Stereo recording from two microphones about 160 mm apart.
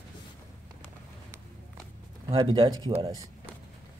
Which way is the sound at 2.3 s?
35° right (ahead or behind).